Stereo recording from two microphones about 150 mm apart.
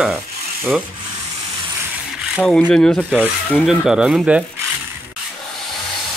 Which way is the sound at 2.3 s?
Centre (ahead or behind).